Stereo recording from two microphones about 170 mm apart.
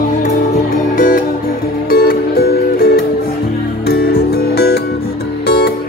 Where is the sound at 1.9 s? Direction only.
65° left (ahead or behind).